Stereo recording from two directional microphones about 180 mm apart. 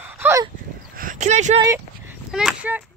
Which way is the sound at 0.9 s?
50° right (ahead or behind).